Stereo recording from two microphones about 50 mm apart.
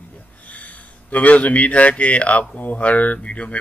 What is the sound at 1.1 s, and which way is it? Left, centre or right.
Speech, left.